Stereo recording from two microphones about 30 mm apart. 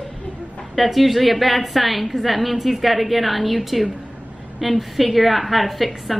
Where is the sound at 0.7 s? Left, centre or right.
Centre.